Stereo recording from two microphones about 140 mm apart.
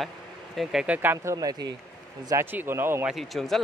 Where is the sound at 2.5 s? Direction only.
15° right (ahead or behind).